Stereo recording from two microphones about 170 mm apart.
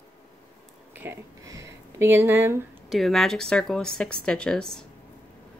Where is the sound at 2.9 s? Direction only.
Centre (ahead or behind).